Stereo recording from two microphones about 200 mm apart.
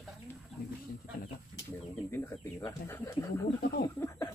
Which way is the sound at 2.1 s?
10° left (ahead or behind).